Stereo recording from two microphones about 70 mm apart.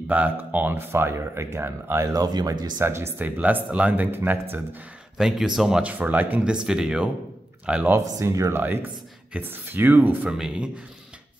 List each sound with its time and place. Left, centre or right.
0.1 s speech: right
2.1 s speech: right
2.8 s speech: right
3.2 s speech: right
5.1 s a man's voice: centre
5.8 s speech: right
6.5 s a man's voice: centre
7.6 s speech: right
8.0 s speech: right
8.5 s speech: right
10.2 s a man's voice: centre